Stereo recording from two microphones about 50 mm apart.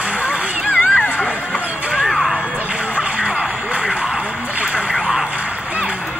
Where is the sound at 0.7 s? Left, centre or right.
Left.